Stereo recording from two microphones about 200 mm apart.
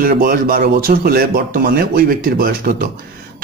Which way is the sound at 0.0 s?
45° right (ahead or behind).